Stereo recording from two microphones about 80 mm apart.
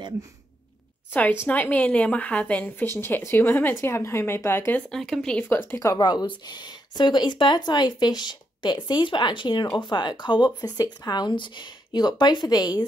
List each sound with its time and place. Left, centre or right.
1.1 s a woman's voice: left
3.0 s speech: left
4.9 s speech: centre
5.4 s speech: left
5.9 s speech: left
10.6 s speech: left